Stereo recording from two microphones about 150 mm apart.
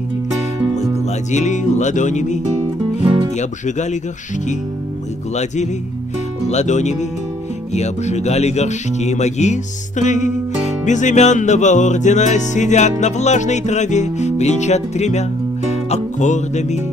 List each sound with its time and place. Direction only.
1.3 s music: 50° left (ahead or behind)
5.3 s music: 50° left (ahead or behind)